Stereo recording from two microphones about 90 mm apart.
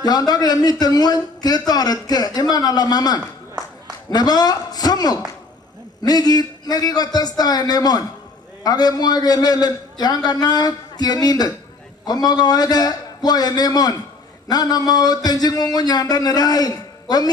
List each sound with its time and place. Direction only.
0.0 s a man's voice: 45° left (ahead or behind)